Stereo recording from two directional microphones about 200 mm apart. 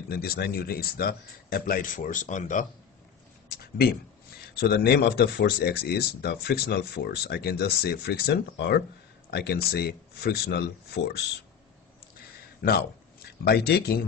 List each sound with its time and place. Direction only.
0.1 s speech: 50° left (ahead or behind)
4.4 s speech: 50° left (ahead or behind)
12.6 s speech: 50° left (ahead or behind)